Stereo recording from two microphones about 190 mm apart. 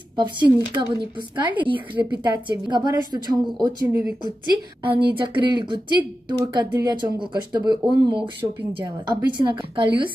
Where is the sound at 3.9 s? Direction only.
10° right (ahead or behind).